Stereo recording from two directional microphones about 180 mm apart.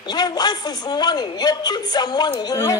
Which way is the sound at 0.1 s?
20° left (ahead or behind).